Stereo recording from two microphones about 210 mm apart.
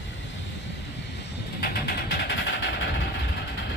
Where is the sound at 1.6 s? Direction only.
50° left (ahead or behind).